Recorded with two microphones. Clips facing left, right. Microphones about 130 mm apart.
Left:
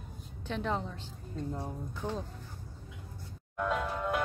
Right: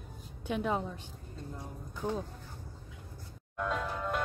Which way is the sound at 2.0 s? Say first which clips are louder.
Right 2 dB; 10° right (ahead or behind).